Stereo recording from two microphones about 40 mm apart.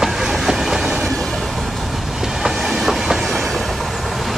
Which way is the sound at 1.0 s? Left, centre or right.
Centre.